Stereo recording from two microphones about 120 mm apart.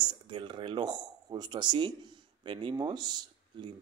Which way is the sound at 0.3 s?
45° right (ahead or behind).